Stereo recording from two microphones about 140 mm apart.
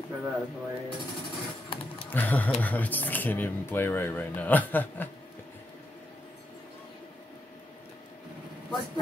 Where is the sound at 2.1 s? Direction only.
10° left (ahead or behind).